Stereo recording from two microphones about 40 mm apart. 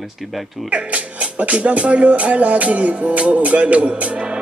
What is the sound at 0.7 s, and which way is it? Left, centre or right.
Speech, right.